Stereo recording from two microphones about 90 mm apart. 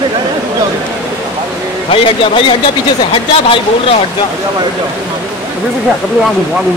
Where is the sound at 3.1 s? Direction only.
90° left.